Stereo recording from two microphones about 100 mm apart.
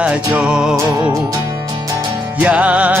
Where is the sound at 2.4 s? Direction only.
15° right (ahead or behind).